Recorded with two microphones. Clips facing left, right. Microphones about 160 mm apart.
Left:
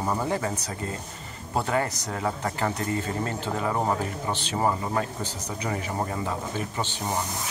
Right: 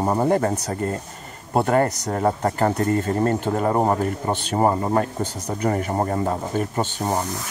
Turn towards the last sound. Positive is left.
turn(degrees=-45)  # may be behind; listen again after turning